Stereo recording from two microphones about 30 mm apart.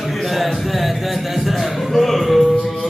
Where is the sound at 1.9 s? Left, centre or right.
Centre.